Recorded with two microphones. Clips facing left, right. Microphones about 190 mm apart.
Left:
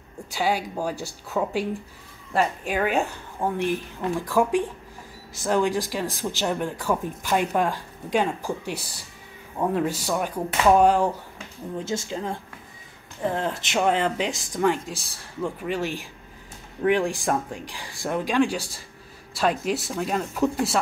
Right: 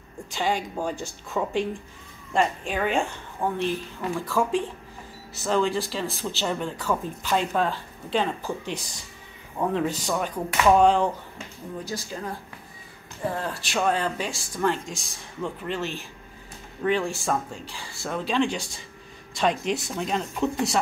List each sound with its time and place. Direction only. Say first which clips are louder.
0.3 s speech: left 2 dB; 10° left (ahead or behind)
11.8 s speech: left 5 dB; 25° left (ahead or behind); by 20.8 s 5° left (ahead or behind)